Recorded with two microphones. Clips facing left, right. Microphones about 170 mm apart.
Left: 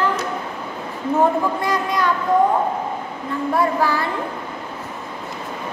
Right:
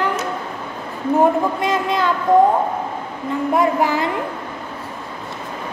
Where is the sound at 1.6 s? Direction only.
25° right (ahead or behind).